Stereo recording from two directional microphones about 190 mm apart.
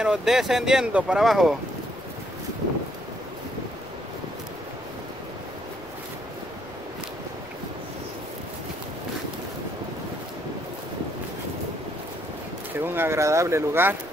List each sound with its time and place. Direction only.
0.0 s speech: 5° right (ahead or behind)
12.7 s speech: 10° right (ahead or behind)